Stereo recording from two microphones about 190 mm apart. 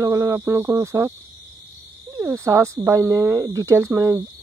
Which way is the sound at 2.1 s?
15° right (ahead or behind).